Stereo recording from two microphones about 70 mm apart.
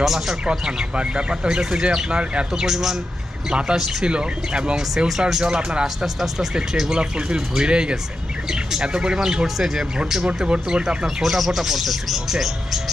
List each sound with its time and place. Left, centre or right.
0.0 s speech: centre